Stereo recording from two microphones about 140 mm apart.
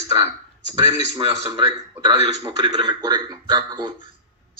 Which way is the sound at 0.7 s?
30° right (ahead or behind).